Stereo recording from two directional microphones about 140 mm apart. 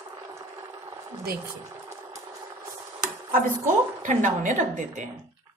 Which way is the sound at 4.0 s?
65° right (ahead or behind).